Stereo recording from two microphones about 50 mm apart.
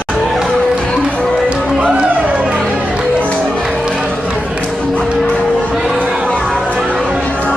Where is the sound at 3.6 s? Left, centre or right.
Centre.